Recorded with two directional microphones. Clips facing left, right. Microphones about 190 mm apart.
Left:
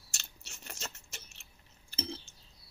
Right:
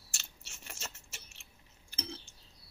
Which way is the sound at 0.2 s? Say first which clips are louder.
Left 2 dB; centre (ahead or behind).